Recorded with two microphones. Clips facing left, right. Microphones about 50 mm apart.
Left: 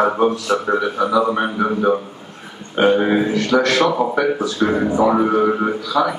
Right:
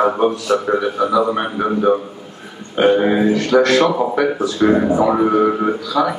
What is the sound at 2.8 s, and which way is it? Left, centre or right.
Speech, centre.